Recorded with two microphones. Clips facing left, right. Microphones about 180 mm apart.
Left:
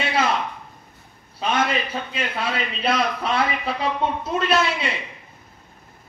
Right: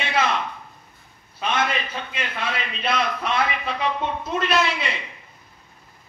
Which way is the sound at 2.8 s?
35° left (ahead or behind).